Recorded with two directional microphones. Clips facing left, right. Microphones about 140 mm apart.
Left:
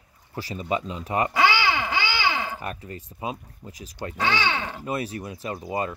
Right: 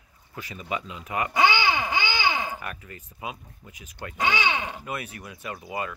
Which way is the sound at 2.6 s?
30° left (ahead or behind).